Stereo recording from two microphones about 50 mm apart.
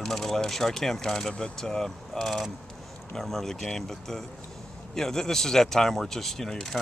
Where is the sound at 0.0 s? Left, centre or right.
Centre.